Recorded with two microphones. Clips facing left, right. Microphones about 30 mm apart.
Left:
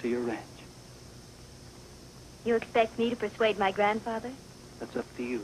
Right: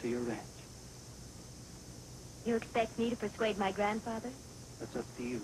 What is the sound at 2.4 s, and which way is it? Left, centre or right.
A man's voice, left.